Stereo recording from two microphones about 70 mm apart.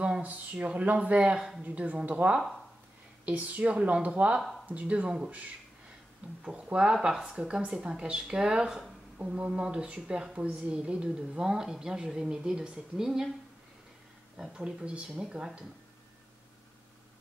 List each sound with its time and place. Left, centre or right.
0.0 s a woman's voice: centre
14.5 s a woman's voice: centre